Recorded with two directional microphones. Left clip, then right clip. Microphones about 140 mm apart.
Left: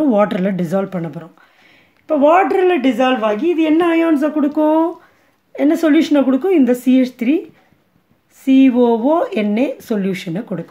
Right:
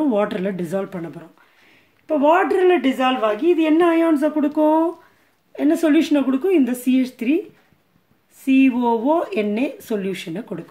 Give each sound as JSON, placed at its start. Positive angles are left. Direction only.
{"t": 0.0, "sound": "speech", "side_deg": 35}
{"t": 8.5, "sound": "speech", "side_deg": 25}